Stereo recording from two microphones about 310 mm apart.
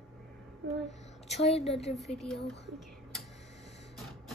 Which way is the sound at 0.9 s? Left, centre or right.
Left.